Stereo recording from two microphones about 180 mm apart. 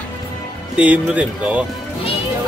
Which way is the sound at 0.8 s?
10° right (ahead or behind).